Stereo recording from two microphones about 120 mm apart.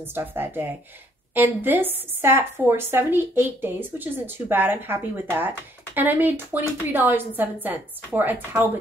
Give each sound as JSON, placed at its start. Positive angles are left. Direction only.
{"t": 0.0, "sound": "a woman's voice", "side_deg": -15}